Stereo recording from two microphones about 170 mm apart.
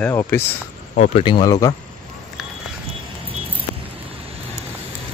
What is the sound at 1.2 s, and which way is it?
Speech, 25° left (ahead or behind).